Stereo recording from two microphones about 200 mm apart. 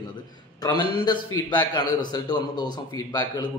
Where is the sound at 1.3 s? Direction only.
20° left (ahead or behind).